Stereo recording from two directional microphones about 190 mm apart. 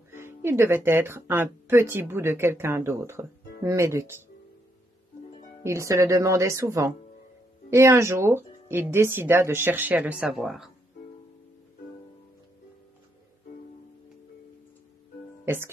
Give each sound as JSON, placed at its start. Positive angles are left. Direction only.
{"t": 0.1, "sound": "speech", "side_deg": -15}
{"t": 5.6, "sound": "speech", "side_deg": -15}
{"t": 15.4, "sound": "speech", "side_deg": -10}